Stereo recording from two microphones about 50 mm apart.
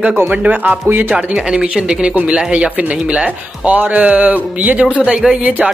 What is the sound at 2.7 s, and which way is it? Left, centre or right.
Speech, right.